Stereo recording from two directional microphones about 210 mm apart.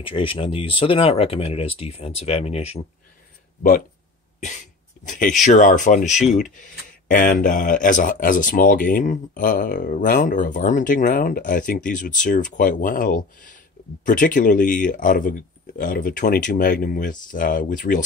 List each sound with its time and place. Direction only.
0.0 s speech: 25° left (ahead or behind)
5.0 s speech: 40° left (ahead or behind)